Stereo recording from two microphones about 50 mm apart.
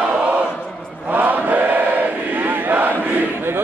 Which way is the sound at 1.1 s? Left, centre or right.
Right.